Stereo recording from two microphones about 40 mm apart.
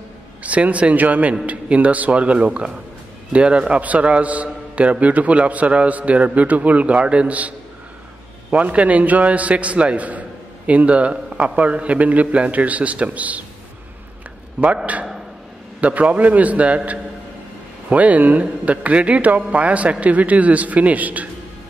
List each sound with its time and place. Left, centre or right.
0.4 s a man's voice: right
14.6 s a man's voice: right
15.8 s a man's voice: right